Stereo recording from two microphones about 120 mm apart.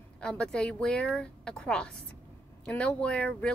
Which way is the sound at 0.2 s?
10° left (ahead or behind).